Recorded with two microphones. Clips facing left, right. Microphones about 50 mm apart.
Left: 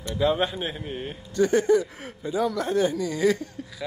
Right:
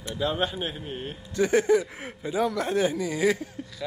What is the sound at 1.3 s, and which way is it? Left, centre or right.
A man's voice, centre.